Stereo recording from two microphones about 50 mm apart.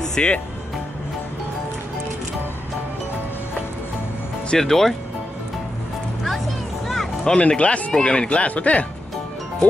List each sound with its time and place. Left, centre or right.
0.1 s speech: centre
4.6 s speech: centre
6.9 s music: centre
7.3 s speech: left